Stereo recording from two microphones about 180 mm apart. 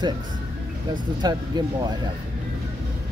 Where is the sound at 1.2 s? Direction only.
25° right (ahead or behind).